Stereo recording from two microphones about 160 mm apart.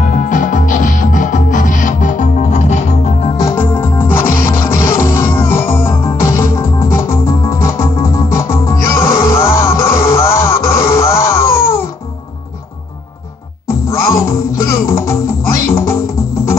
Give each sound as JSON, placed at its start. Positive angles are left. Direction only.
{"t": 0.0, "sound": "music", "side_deg": 55}
{"t": 3.3, "sound": "music", "side_deg": 15}
{"t": 13.8, "sound": "music", "side_deg": 15}